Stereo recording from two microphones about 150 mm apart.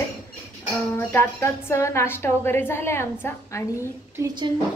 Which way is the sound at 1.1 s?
15° left (ahead or behind).